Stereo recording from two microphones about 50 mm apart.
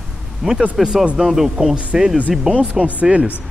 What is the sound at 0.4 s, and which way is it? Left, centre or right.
Speech, centre.